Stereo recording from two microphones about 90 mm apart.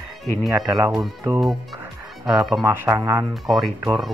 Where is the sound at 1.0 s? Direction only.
25° right (ahead or behind).